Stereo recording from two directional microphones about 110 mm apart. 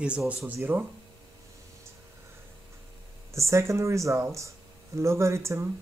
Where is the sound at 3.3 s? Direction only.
25° right (ahead or behind).